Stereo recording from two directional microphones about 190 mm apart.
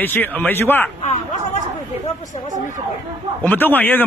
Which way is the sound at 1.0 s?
40° left (ahead or behind).